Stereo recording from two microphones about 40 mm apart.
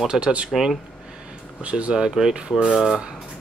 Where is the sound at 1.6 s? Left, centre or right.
Right.